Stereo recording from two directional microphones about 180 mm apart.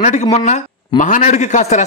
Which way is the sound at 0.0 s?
40° left (ahead or behind).